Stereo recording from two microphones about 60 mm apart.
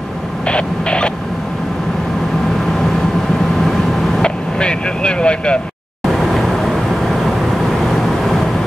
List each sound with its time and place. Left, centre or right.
0.5 s a sound: centre
4.2 s vehicle: centre
6.0 s vehicle: centre